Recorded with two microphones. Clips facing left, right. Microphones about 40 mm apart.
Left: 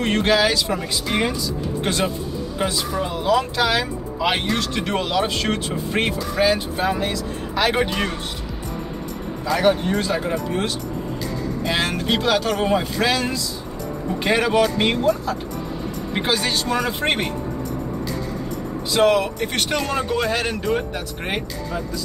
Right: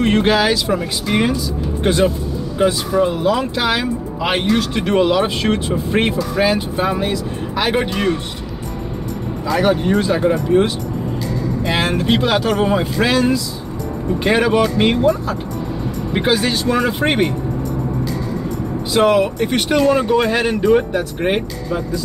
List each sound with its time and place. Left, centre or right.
0.0 s speech: centre
2.6 s speech: centre
9.5 s speech: centre
18.9 s speech: centre